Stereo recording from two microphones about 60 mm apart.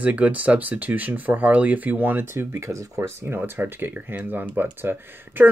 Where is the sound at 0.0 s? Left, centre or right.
Right.